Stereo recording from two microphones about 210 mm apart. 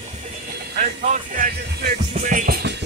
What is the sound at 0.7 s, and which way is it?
Speech, 40° right (ahead or behind).